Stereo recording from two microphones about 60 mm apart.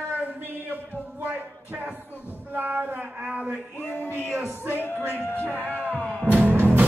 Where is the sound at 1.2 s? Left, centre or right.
Right.